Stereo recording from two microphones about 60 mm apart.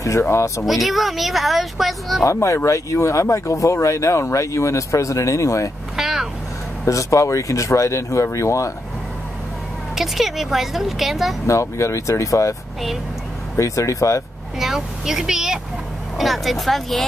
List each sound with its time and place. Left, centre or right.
0.3 s speech: left
0.7 s speech: centre
2.2 s speech: left
5.9 s speech: centre
6.8 s speech: left
9.9 s speech: centre
11.4 s speech: left
13.6 s speech: left
14.6 s speech: centre
16.2 s speech: centre